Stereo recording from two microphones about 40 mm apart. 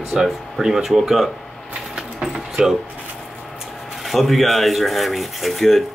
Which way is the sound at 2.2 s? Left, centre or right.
Centre.